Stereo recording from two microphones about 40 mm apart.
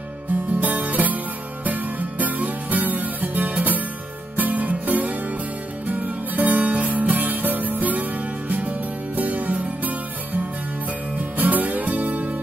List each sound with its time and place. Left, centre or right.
0.6 s music: right